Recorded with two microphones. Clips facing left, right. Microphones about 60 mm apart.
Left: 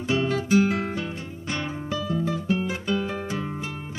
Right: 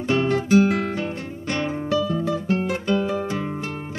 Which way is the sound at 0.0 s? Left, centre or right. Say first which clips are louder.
Right 4 dB; right.